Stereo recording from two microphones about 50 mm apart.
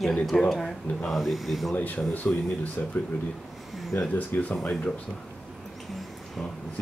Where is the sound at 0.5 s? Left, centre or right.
Centre.